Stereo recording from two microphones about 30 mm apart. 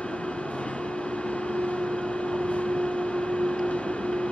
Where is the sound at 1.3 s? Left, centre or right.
Left.